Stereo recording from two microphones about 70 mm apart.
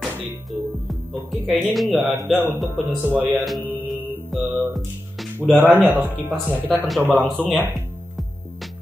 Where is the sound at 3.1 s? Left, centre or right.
Centre.